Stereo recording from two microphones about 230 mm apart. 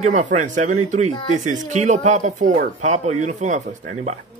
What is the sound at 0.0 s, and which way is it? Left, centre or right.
Speech, right.